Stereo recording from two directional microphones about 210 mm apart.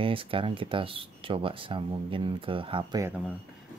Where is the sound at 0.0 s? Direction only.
25° right (ahead or behind).